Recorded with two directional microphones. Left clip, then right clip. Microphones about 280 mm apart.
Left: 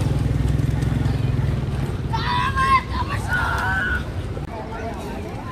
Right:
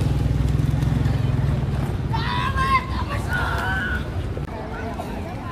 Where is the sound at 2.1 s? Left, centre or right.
Left.